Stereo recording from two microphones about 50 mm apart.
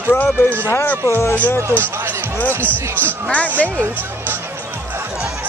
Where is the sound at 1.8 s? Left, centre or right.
Right.